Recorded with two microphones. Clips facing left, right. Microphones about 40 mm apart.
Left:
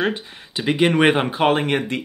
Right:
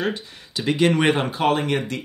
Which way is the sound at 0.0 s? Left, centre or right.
Left.